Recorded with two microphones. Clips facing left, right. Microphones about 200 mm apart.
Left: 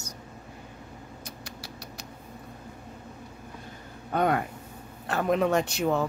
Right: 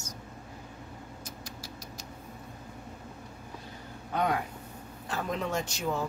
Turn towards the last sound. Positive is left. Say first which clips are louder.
# left 6 dB
turn(degrees=60)  # may be behind; listen again after turning